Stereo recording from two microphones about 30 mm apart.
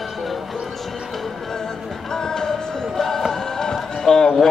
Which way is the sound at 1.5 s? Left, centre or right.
Centre.